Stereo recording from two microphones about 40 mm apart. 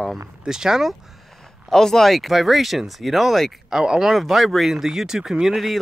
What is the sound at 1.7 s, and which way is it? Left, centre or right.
Speech, centre.